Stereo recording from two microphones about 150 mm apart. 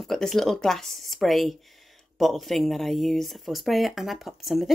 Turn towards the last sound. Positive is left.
turn(degrees=0)  # may be behind; listen again after turning